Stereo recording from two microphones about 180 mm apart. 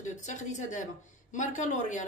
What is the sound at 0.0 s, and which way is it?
A woman's voice, 40° left (ahead or behind).